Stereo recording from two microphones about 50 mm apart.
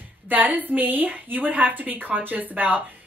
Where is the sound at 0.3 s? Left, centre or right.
Right.